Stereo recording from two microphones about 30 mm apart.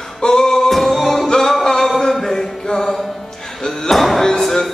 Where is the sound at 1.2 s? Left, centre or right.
Centre.